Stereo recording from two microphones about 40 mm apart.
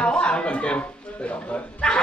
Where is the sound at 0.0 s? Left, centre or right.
Left.